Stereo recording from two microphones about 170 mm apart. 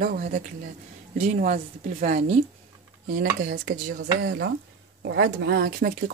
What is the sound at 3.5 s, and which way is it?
Speech, 75° right (ahead or behind).